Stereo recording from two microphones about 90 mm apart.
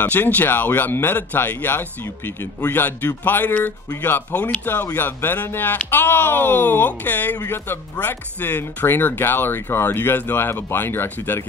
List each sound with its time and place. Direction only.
0.0 s speech: 20° left (ahead or behind)